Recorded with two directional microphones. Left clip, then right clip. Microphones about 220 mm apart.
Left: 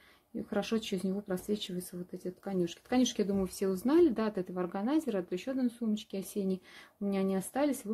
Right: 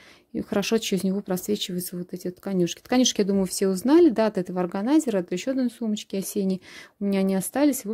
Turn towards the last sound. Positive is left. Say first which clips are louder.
# right 9 dB
turn(degrees=-45)  # may be behind; listen again after turning